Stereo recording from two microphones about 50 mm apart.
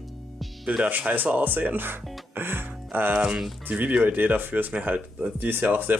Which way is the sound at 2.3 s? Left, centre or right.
Right.